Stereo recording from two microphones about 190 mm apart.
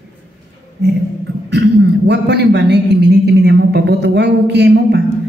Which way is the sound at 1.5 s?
65° right (ahead or behind).